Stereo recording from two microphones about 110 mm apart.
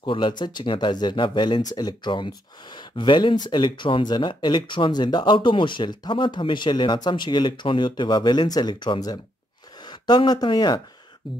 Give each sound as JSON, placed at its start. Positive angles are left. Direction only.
{"t": 0.0, "sound": "speech", "side_deg": 45}